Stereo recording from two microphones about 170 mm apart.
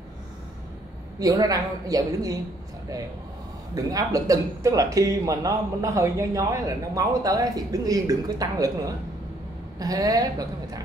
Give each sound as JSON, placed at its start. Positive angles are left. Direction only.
{"t": 1.2, "sound": "speech", "side_deg": -20}
{"t": 3.7, "sound": "speech", "side_deg": -20}